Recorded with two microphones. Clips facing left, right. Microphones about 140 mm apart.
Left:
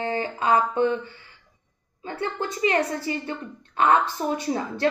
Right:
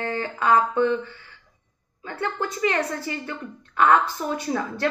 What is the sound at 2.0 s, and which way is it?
A woman's voice, 25° left (ahead or behind).